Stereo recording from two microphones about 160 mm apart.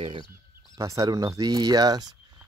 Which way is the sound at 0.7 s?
20° right (ahead or behind).